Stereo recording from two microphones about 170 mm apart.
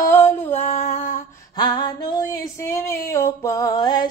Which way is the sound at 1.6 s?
25° left (ahead or behind).